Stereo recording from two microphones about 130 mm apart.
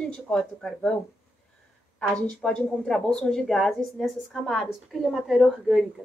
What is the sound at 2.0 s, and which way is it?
A woman's voice, 5° left (ahead or behind).